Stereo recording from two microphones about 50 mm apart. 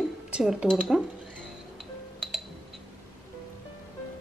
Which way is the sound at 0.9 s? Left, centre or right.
Centre.